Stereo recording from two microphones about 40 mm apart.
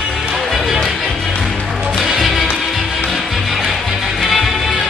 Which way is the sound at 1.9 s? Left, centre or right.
Centre.